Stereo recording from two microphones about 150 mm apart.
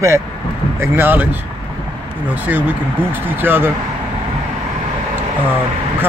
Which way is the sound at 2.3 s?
10° right (ahead or behind).